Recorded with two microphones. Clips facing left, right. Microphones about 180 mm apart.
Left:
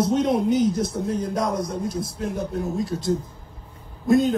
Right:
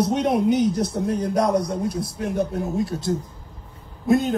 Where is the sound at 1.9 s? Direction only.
65° right (ahead or behind).